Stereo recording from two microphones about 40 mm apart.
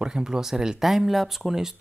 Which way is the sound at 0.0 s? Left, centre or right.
Centre.